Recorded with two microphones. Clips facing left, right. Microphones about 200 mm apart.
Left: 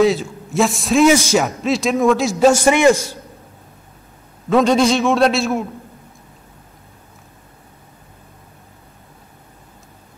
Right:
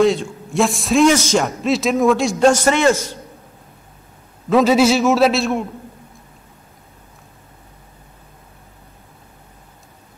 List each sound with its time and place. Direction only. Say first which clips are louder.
0.0 s a man's voice: even; centre (ahead or behind)
4.5 s a man's voice: right 1 dB; 5° right (ahead or behind)